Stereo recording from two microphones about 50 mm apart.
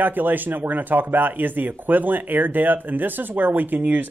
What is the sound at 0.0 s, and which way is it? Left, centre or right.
Speech, right.